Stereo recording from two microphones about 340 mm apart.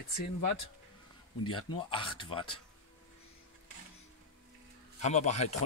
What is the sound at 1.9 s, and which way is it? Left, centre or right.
Speech, centre.